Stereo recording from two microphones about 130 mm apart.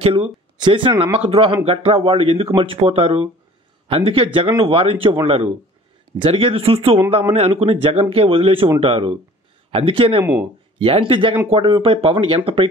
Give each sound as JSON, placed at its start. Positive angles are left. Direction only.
{"t": 0.0, "sound": "speech", "side_deg": -45}